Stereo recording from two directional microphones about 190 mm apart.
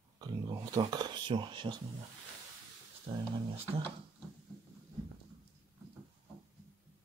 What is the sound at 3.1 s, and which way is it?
Speech, 25° right (ahead or behind).